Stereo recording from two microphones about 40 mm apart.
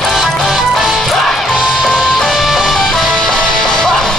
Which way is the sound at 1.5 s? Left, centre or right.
Centre.